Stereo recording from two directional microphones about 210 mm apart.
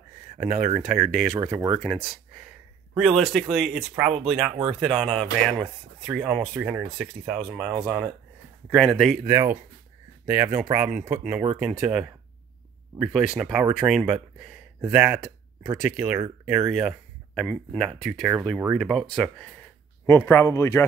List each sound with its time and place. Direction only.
0.4 s speech: 40° right (ahead or behind)
0.7 s speech: centre (ahead or behind)
2.9 s speech: centre (ahead or behind)
9.3 s speech: 15° right (ahead or behind); by 20.8 s 15° left (ahead or behind)